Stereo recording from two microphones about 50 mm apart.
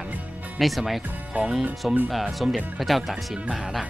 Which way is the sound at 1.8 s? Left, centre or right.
Centre.